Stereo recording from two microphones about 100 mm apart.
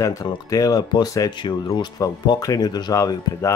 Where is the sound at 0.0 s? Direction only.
35° left (ahead or behind).